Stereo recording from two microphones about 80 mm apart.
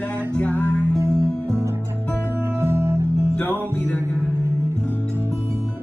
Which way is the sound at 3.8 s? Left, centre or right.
Left.